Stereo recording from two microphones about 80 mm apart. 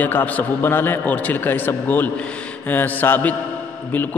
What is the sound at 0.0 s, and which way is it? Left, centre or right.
A man's voice, left.